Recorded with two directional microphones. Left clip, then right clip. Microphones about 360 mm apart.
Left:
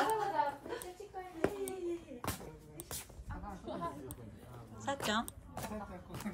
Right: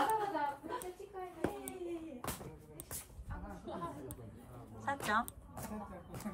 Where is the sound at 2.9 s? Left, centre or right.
Centre.